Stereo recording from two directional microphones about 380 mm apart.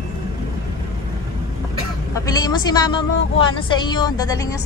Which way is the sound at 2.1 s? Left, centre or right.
Centre.